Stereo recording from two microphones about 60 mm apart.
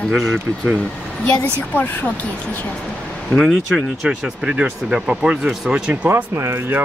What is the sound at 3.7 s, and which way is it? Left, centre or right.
Speech, centre.